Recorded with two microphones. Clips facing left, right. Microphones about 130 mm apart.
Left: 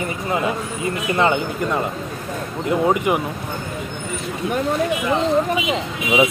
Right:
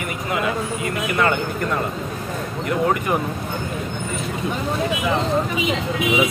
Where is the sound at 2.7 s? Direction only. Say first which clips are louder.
Left 3 dB; 20° left (ahead or behind).